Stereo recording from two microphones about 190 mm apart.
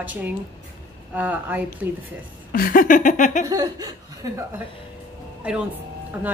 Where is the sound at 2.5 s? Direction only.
50° left (ahead or behind).